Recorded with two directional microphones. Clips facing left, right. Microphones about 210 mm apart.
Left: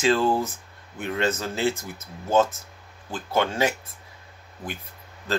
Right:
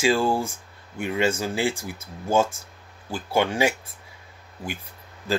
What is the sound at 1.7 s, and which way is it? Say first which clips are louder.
Speech: right 2 dB; 30° right (ahead or behind).